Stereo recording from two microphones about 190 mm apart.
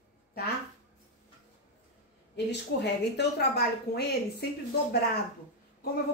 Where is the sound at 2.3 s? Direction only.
60° left (ahead or behind).